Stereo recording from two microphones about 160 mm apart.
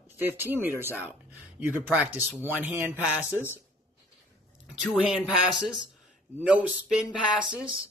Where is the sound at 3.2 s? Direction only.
15° left (ahead or behind).